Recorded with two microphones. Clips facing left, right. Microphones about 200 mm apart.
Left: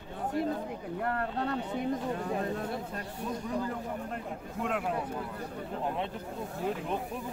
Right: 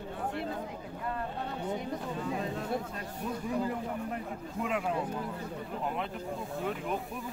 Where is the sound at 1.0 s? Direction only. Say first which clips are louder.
Left 4 dB; 70° left (ahead or behind).